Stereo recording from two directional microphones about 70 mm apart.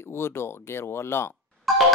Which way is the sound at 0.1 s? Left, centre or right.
Left.